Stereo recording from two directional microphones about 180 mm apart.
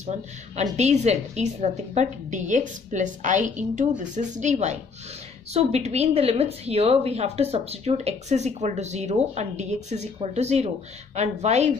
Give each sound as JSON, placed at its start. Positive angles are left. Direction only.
{"t": 0.6, "sound": "a woman's voice", "side_deg": -40}